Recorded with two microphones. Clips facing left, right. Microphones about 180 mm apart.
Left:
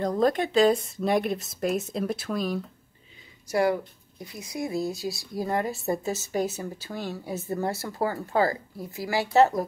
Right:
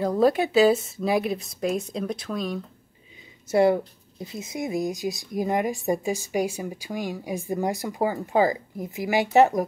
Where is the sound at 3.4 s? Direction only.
25° right (ahead or behind).